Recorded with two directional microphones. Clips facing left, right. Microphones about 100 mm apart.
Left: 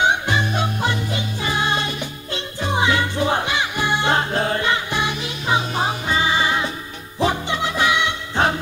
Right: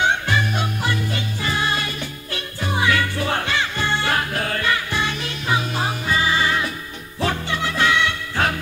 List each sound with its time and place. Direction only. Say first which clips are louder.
0.0 s music: left 1 dB; 20° left (ahead or behind)